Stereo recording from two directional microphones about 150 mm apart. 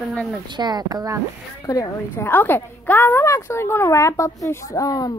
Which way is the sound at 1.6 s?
20° left (ahead or behind).